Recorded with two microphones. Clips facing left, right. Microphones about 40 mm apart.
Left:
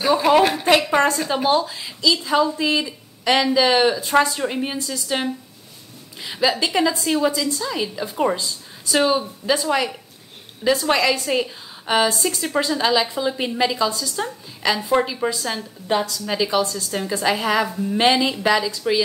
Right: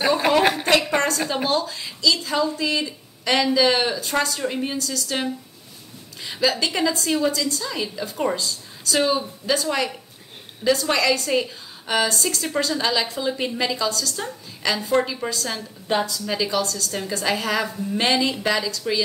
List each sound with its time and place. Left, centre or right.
0.7 s a woman's voice: centre
7.6 s a woman's voice: centre
15.9 s a woman's voice: centre
16.3 s a woman's voice: centre